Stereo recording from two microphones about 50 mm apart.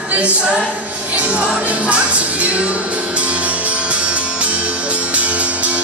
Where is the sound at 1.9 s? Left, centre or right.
Right.